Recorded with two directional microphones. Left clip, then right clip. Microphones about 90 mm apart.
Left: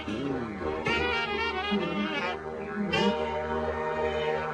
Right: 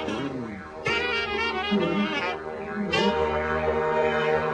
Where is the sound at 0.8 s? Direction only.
5° right (ahead or behind).